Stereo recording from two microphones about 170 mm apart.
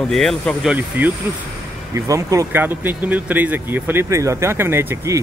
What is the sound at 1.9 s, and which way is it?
Speech, 20° right (ahead or behind).